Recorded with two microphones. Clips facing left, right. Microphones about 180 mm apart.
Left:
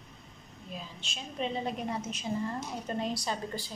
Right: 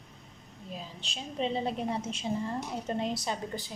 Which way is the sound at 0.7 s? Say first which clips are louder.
Right 1 dB; 35° right (ahead or behind).